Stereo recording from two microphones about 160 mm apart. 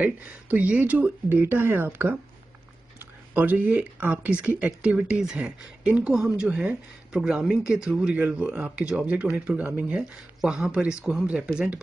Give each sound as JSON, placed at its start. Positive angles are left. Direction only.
{"t": 0.0, "sound": "speech", "side_deg": -10}